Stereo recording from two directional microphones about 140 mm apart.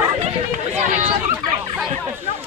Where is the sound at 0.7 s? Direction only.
60° right (ahead or behind).